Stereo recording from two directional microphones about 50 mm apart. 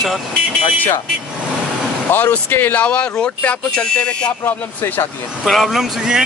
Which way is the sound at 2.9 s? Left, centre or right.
Left.